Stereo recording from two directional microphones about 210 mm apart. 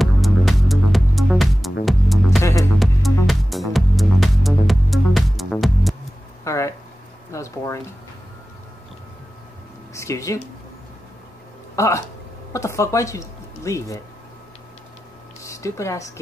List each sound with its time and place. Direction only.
0.0 s music: centre (ahead or behind)
2.4 s music: 15° left (ahead or behind)
2.8 s music: centre (ahead or behind)
6.4 s a sound: 15° left (ahead or behind)
7.3 s speech: 15° left (ahead or behind)
9.9 s speech: 15° left (ahead or behind)
11.7 s speech: 15° left (ahead or behind)
15.4 s speech: 15° left (ahead or behind)